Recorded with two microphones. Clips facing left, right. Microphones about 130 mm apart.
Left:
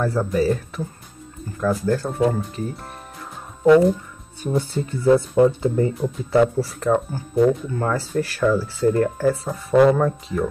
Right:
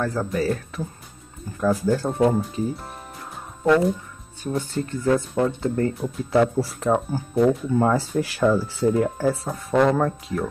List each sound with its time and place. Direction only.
0.0 s speech: 5° left (ahead or behind)
4.6 s speech: 10° left (ahead or behind)
7.8 s speech: 15° right (ahead or behind)
8.9 s speech: 5° right (ahead or behind)